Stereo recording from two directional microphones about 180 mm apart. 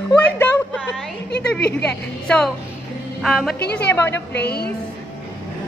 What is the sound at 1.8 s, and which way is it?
A woman's voice, 5° left (ahead or behind).